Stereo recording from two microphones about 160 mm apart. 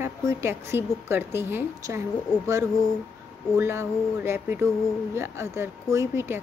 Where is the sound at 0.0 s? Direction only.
15° right (ahead or behind).